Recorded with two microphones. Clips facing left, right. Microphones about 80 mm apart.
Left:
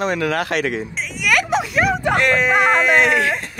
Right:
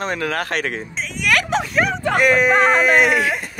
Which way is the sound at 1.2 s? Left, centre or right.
Centre.